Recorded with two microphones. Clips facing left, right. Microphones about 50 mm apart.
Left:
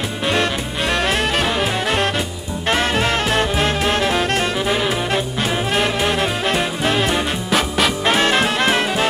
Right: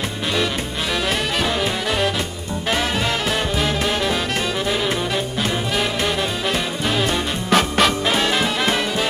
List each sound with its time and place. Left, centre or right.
0.9 s music: left
5.8 s music: left
7.4 s music: centre
8.0 s music: left